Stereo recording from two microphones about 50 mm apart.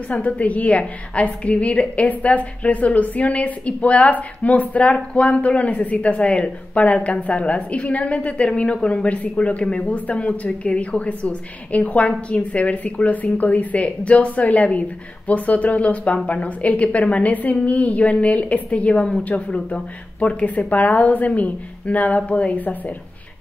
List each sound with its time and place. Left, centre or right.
0.1 s a woman's voice: left